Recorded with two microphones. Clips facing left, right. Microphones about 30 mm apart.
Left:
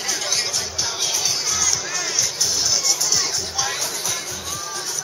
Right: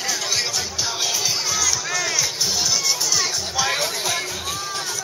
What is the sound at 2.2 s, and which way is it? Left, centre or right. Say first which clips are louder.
Music: even; centre.